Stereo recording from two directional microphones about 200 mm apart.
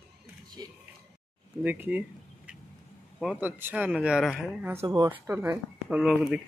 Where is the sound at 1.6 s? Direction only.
10° right (ahead or behind).